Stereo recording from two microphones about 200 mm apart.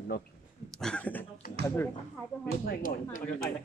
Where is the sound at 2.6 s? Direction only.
45° left (ahead or behind).